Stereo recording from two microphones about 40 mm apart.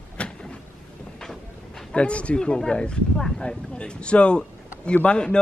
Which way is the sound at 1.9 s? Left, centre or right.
Left.